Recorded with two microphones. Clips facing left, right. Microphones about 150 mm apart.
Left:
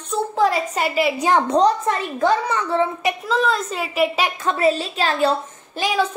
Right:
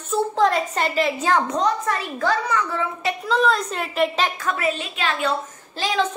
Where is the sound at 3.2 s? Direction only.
Centre (ahead or behind).